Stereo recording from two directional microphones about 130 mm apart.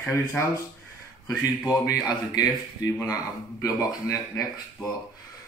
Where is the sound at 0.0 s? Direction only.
20° left (ahead or behind).